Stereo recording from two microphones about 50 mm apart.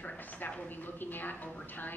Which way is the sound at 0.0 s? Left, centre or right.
Left.